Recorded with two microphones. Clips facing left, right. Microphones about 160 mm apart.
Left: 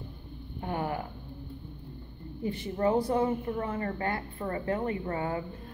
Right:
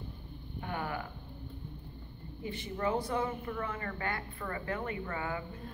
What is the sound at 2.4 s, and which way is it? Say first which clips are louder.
A woman's voice: left 6 dB; 35° left (ahead or behind).